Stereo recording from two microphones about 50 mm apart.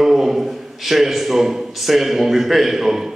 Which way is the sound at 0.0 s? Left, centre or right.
Centre.